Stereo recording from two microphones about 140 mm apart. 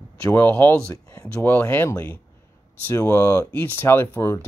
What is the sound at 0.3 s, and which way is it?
Speech, 15° left (ahead or behind).